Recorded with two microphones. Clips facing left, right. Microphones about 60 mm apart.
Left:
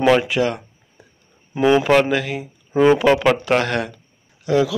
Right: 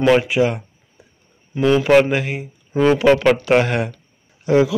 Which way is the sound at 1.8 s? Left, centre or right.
Centre.